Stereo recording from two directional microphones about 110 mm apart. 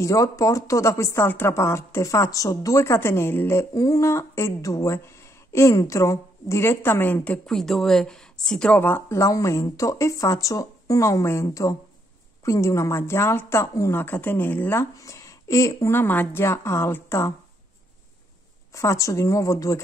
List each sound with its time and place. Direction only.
0.0 s speech: 30° left (ahead or behind)
7.4 s speech: 5° left (ahead or behind); by 17.3 s 20° left (ahead or behind)
18.7 s speech: 30° left (ahead or behind)